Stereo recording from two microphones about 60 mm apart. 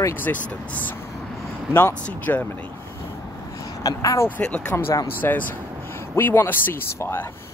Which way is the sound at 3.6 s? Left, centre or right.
Left.